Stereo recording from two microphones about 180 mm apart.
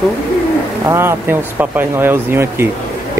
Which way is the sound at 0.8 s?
15° right (ahead or behind).